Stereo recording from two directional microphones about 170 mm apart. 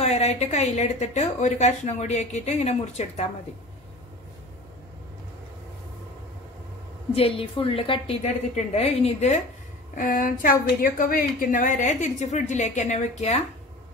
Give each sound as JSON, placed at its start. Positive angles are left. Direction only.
{"t": 0.0, "sound": "a woman's voice", "side_deg": 40}
{"t": 7.2, "sound": "a woman's voice", "side_deg": 35}
{"t": 9.9, "sound": "a woman's voice", "side_deg": 55}